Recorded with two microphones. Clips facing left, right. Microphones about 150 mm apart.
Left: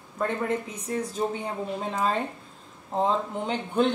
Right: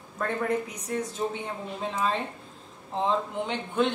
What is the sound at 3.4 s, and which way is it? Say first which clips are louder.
Speech: left 4 dB; 40° left (ahead or behind).